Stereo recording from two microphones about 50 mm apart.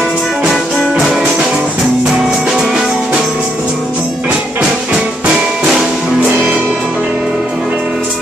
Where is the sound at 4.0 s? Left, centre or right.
Right.